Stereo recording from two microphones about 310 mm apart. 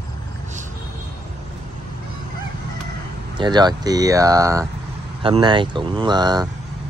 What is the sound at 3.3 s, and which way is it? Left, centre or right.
Speech, centre.